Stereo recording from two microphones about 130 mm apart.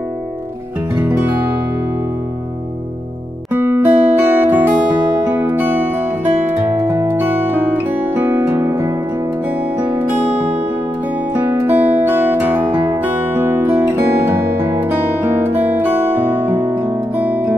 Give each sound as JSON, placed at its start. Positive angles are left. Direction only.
{"t": 0.9, "sound": "music", "side_deg": -10}
{"t": 3.5, "sound": "music", "side_deg": -15}